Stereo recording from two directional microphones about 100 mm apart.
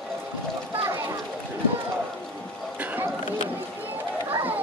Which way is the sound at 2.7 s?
20° right (ahead or behind).